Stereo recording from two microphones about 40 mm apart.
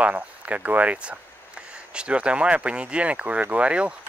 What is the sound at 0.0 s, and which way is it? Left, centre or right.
Speech, right.